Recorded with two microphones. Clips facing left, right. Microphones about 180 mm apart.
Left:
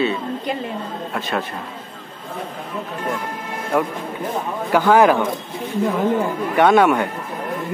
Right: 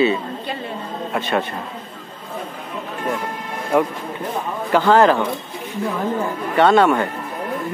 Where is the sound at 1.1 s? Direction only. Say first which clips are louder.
Right 4 dB; centre (ahead or behind).